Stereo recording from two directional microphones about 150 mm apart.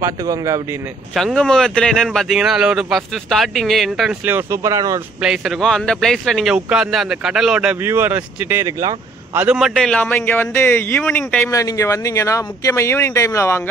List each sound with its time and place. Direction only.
0.0 s speech: 25° right (ahead or behind)
1.1 s speech: 5° left (ahead or behind)
4.3 s speech: 15° right (ahead or behind)
5.2 s speech: 5° right (ahead or behind)
7.8 s a man's voice: 15° right (ahead or behind); by 11.5 s 10° left (ahead or behind)
11.5 s speech: 20° left (ahead or behind)